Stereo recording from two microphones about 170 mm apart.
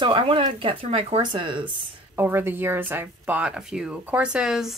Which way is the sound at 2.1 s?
15° right (ahead or behind).